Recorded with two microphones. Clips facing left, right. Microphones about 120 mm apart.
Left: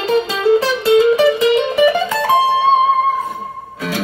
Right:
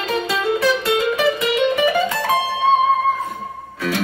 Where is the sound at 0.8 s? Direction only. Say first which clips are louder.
Left 7 dB; 35° left (ahead or behind).